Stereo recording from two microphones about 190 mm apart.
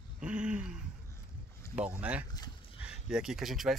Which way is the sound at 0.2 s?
5° right (ahead or behind).